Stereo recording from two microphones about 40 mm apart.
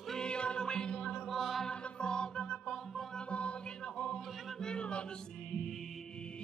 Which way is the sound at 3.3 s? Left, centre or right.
Left.